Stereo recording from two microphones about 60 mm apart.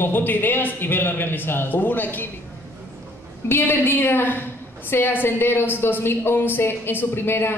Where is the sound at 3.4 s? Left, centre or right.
Left.